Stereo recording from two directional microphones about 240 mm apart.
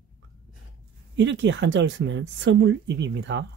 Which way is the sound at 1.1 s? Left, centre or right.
Right.